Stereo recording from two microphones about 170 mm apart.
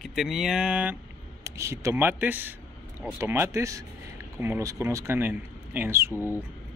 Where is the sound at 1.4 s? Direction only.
15° right (ahead or behind).